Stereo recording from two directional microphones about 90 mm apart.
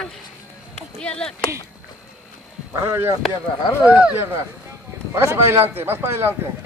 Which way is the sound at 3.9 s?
15° right (ahead or behind).